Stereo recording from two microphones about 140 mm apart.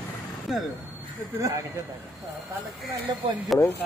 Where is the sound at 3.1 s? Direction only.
30° right (ahead or behind).